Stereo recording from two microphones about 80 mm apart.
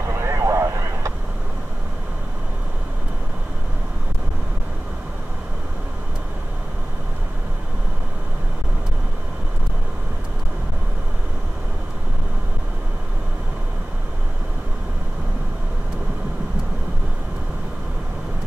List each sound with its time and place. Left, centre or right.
0.0 s vehicle: right